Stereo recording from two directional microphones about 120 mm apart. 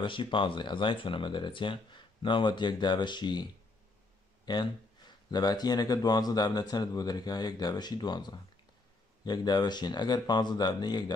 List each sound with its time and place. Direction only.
0.0 s speech: 45° left (ahead or behind)
4.5 s speech: 35° left (ahead or behind)